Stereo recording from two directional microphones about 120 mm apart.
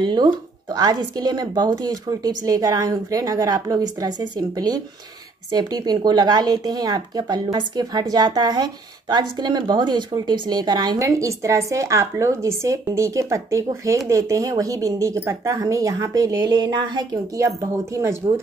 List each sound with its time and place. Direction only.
0.0 s speech: 35° right (ahead or behind)
16.4 s speech: 40° right (ahead or behind)